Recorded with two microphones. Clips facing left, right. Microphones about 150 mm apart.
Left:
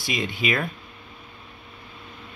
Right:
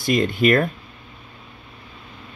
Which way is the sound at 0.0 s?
55° right (ahead or behind).